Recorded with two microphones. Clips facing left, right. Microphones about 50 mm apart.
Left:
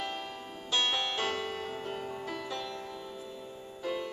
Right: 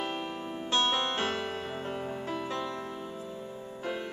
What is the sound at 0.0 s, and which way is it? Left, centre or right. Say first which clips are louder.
Music: right 3 dB; right.